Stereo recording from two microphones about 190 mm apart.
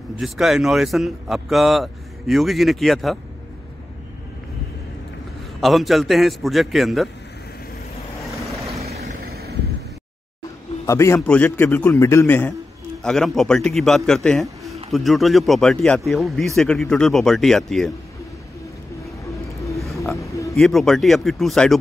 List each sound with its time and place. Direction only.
0.2 s a man's voice: centre (ahead or behind)
5.6 s a man's voice: centre (ahead or behind)
8.9 s vehicle: 55° right (ahead or behind)
10.9 s a man's voice: 15° left (ahead or behind)
20.2 s music: 15° left (ahead or behind)
20.5 s a man's voice: centre (ahead or behind)